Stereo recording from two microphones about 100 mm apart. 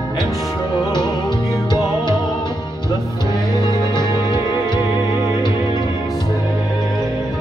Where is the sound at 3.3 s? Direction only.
50° left (ahead or behind).